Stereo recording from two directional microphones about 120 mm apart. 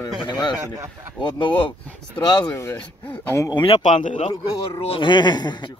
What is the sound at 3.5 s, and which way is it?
Speech, 45° left (ahead or behind).